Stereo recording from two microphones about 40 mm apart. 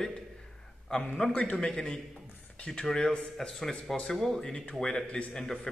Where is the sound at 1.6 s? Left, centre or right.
Left.